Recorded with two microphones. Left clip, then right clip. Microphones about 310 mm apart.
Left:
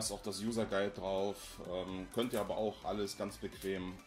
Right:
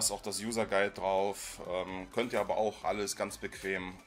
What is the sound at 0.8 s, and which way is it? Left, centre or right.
Speech, right.